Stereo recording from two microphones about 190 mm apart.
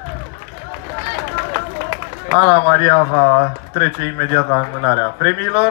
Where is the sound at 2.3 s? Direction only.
30° right (ahead or behind).